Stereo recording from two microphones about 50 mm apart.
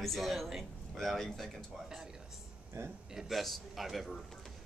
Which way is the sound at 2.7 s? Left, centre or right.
Right.